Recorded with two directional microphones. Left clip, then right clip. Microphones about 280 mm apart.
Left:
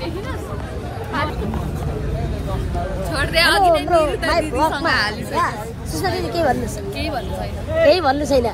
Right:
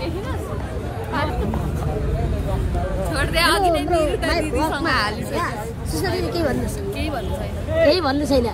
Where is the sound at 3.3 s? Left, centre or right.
Centre.